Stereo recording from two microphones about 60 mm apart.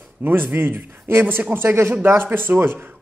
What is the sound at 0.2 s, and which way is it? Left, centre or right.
A woman's voice, right.